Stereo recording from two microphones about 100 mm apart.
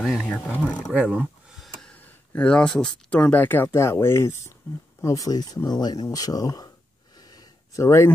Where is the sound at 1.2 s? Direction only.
5° right (ahead or behind).